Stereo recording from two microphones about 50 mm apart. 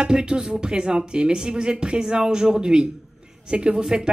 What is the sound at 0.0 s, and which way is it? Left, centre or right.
Speech, centre.